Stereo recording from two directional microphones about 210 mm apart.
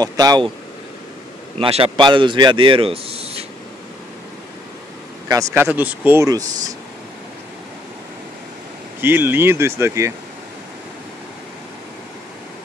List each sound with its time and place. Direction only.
0.0 s speech: 20° right (ahead or behind)
1.6 s speech: 25° right (ahead or behind)
5.3 s speech: 15° right (ahead or behind)
9.0 s speech: 10° right (ahead or behind)